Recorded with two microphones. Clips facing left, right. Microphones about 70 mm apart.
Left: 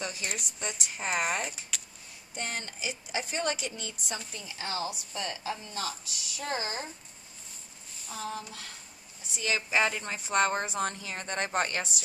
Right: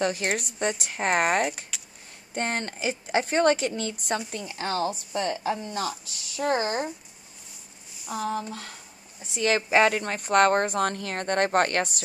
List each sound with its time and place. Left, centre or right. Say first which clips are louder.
0.0 s speech: right 10 dB; right
8.3 s speech: right 7 dB; right
9.3 s speech: right 7 dB; right